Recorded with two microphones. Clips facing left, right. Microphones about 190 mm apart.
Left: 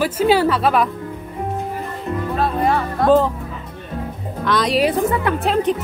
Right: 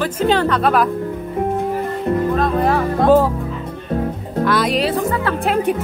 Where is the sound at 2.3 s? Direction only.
Centre (ahead or behind).